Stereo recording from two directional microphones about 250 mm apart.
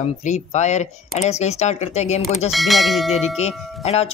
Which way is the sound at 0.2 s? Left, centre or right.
Left.